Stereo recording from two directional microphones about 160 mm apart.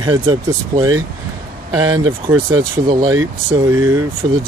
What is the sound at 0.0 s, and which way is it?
Speech, 30° right (ahead or behind).